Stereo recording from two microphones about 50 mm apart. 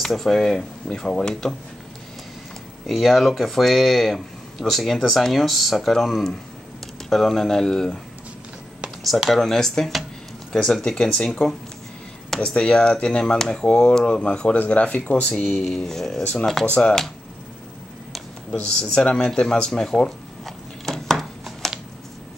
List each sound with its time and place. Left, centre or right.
0.0 s speech: centre
2.9 s speech: centre
9.3 s speech: centre
12.4 s speech: centre
15.3 s speech: centre
16.6 s speech: left
18.5 s speech: centre
19.0 s a sound: centre